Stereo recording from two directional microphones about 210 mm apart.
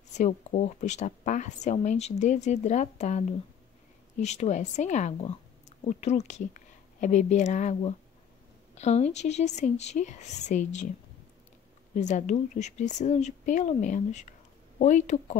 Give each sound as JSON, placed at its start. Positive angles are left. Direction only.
{"t": 0.1, "sound": "speech", "side_deg": 35}
{"t": 11.9, "sound": "speech", "side_deg": 35}